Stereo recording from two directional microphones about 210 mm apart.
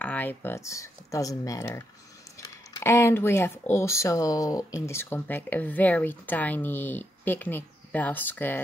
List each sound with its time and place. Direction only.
0.0 s speech: 10° left (ahead or behind)